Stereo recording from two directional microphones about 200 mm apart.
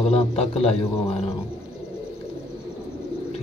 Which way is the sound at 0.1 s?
30° left (ahead or behind).